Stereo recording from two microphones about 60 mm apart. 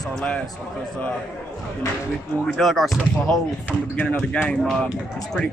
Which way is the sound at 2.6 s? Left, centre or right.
Centre.